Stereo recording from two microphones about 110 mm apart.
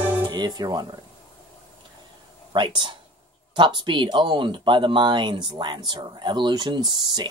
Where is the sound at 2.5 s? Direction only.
45° right (ahead or behind).